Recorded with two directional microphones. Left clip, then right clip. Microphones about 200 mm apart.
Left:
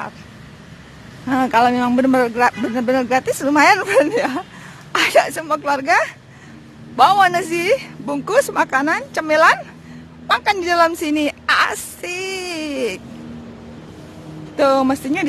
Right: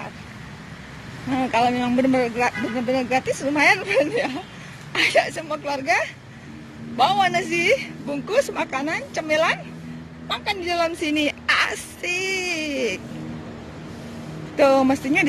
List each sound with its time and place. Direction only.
1.3 s speech: 25° left (ahead or behind)
14.6 s speech: 20° left (ahead or behind)